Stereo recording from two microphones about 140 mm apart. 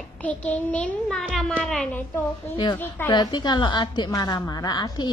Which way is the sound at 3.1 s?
30° left (ahead or behind).